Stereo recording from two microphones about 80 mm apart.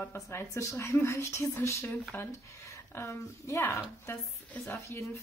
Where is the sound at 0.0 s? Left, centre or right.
Left.